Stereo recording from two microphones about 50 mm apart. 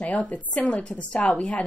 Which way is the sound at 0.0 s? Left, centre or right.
Left.